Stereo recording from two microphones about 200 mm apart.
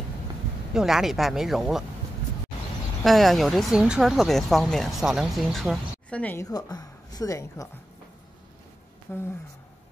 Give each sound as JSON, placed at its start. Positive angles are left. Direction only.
{"t": 0.7, "sound": "speech", "side_deg": 0}
{"t": 3.0, "sound": "speech", "side_deg": 0}
{"t": 6.4, "sound": "a woman's voice", "side_deg": 20}
{"t": 9.1, "sound": "a woman's voice", "side_deg": 10}